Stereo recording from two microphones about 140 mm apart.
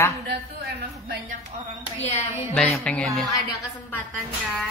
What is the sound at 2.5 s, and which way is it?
Speech, 10° left (ahead or behind).